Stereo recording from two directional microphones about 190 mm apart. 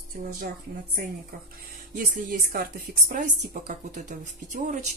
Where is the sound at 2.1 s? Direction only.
50° right (ahead or behind).